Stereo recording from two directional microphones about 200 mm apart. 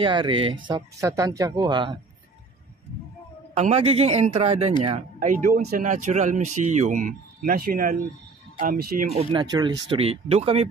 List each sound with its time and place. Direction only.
0.0 s speech: 25° right (ahead or behind)
3.5 s speech: 30° right (ahead or behind)
9.1 s speech: 25° right (ahead or behind)